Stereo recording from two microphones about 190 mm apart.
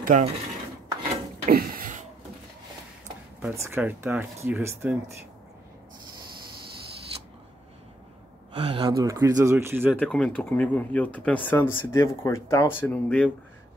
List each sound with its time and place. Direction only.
0.0 s mechanisms: 45° right (ahead or behind)
1.4 s a sound: 50° right (ahead or behind)
3.3 s speech: 10° right (ahead or behind)
8.5 s speech: 30° right (ahead or behind)
8.9 s speech: 15° right (ahead or behind)
9.9 s speech: 5° left (ahead or behind)